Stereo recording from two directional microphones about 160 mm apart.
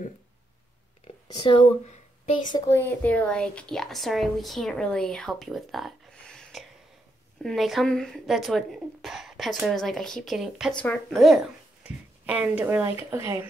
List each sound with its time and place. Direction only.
1.3 s speech: 30° left (ahead or behind)
2.4 s a woman's voice: 25° left (ahead or behind)
2.8 s a woman's voice: 10° left (ahead or behind); by 13.5 s 15° right (ahead or behind)